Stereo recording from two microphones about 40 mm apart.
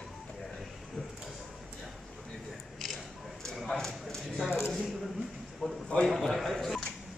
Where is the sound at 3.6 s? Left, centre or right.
Centre.